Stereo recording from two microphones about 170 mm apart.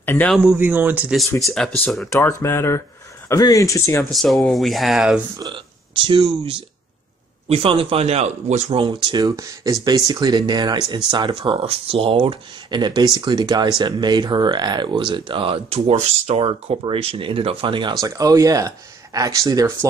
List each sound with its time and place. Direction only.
0.0 s speech: 10° left (ahead or behind)
0.4 s speech: 10° right (ahead or behind)
1.4 s speech: centre (ahead or behind)
2.0 s speech: 15° left (ahead or behind)
4.0 s speech: centre (ahead or behind)
5.4 s speech: 30° right (ahead or behind)